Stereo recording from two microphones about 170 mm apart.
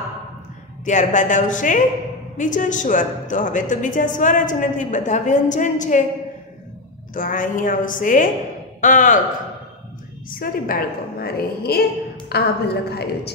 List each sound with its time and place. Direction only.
0.8 s a woman's voice: 45° left (ahead or behind)
7.2 s a woman's voice: 50° left (ahead or behind)
10.4 s a woman's voice: 60° left (ahead or behind)